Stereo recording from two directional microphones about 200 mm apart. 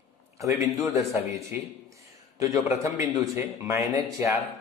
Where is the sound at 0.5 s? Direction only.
Centre (ahead or behind).